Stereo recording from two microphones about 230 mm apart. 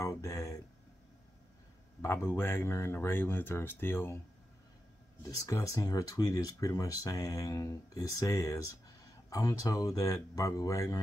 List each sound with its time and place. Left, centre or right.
0.0 s a sound: centre
2.0 s speech: centre
5.2 s speech: centre